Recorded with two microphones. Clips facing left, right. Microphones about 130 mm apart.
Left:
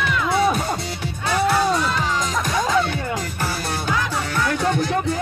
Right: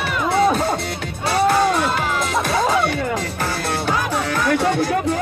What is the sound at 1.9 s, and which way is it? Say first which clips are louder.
Music: right 2 dB; 10° right (ahead or behind).